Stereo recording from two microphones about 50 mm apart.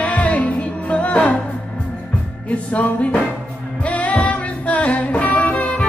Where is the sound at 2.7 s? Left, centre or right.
Left.